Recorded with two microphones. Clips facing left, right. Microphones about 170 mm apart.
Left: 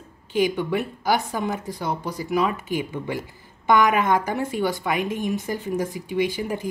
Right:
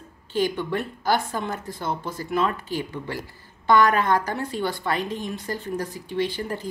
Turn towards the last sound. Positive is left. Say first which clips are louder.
# left 2 dB
turn(degrees=15)  # may be behind; listen again after turning